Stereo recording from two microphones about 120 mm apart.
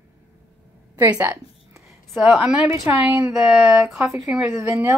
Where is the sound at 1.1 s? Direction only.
20° right (ahead or behind).